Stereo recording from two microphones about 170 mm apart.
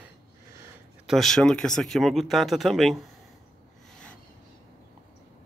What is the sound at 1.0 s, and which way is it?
Speech, centre (ahead or behind).